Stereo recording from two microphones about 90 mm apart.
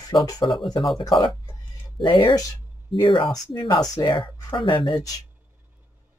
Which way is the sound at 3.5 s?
70° left (ahead or behind).